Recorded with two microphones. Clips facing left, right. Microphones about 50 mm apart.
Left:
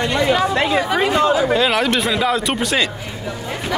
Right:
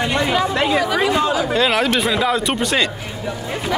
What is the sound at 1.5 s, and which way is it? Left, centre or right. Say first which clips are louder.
Speech: even; centre.